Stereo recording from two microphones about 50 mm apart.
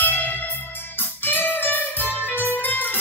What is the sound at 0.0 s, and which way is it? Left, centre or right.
Music, left.